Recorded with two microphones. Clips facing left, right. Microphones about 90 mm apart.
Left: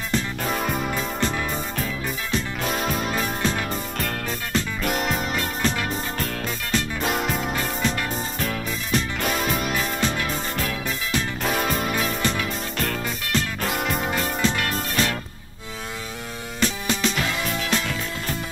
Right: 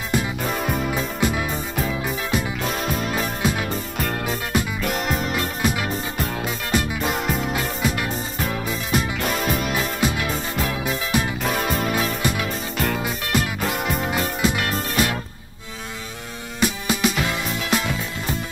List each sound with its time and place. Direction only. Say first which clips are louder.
0.1 s music: right 2 dB; 10° right (ahead or behind)
16.5 s music: right 2 dB; 10° right (ahead or behind)